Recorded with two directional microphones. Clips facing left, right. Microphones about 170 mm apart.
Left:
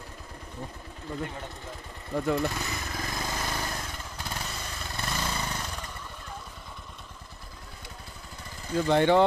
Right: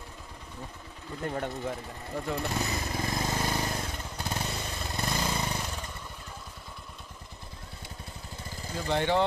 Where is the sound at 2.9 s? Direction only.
25° right (ahead or behind).